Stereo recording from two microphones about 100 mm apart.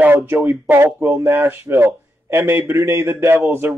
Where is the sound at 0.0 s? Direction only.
20° right (ahead or behind).